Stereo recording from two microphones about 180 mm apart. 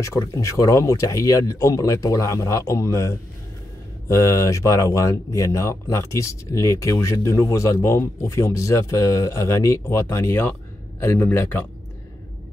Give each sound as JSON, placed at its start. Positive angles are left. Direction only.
{"t": 0.0, "sound": "speech", "side_deg": 20}